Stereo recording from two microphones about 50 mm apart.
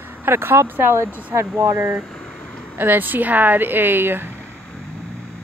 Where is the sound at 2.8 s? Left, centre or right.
Right.